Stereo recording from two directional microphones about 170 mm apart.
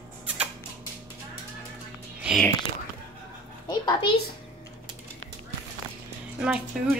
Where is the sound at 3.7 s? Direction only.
25° left (ahead or behind).